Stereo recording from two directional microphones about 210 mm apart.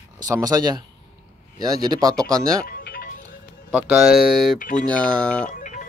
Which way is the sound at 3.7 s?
5° right (ahead or behind).